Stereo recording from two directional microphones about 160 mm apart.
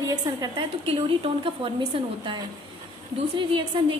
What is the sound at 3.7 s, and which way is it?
Speech, 30° right (ahead or behind).